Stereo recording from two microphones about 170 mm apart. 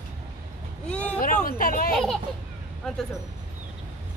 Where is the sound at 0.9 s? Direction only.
10° left (ahead or behind).